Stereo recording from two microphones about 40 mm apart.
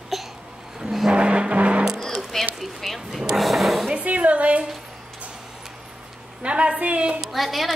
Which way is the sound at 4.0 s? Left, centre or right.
Right.